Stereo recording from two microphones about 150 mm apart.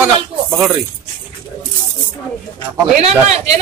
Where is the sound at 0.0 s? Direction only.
5° right (ahead or behind).